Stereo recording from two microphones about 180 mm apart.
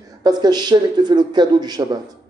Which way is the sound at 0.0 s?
20° right (ahead or behind).